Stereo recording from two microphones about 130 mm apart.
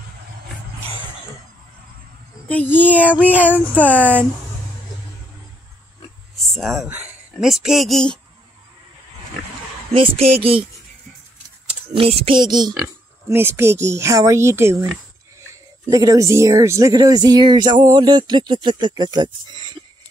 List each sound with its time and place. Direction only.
2.4 s a child's voice: 15° left (ahead or behind)
3.3 s speech: 10° right (ahead or behind)
3.7 s a child's voice: 10° left (ahead or behind)
6.3 s a sound: centre (ahead or behind)
7.3 s speech: 5° right (ahead or behind)
9.9 s speech: 45° right (ahead or behind)
11.9 s speech: 45° right (ahead or behind)
13.3 s speech: 20° right (ahead or behind); by 19.8 s 35° right (ahead or behind)